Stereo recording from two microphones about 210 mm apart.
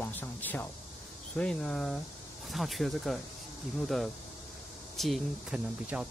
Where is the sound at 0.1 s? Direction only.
10° left (ahead or behind).